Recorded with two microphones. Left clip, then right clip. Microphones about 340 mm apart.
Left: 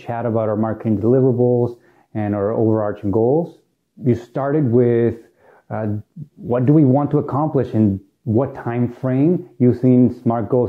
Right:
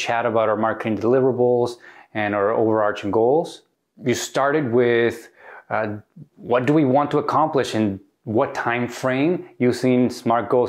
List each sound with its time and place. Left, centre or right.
0.0 s speech: centre
1.7 s speech: centre
3.2 s speech: right
4.0 s speech: centre